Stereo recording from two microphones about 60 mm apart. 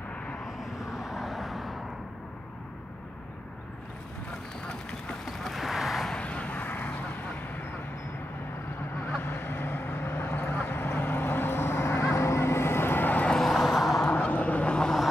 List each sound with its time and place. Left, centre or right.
0.7 s vehicle: centre
4.3 s a sound: centre
5.4 s a sound: centre
6.1 s vehicle: left
9.2 s vehicle: left
13.4 s vehicle: centre
14.0 s vehicle: left